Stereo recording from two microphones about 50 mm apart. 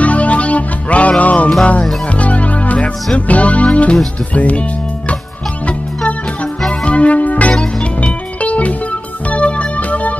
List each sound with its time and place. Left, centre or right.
0.0 s music: left
4.3 s speech: left
6.8 s music: left